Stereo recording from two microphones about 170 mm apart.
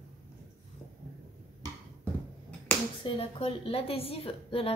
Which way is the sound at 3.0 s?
30° left (ahead or behind).